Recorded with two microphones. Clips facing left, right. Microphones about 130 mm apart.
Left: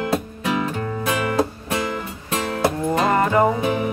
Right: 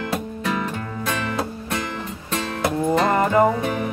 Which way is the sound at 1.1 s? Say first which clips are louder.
Left 3 dB; 15° left (ahead or behind).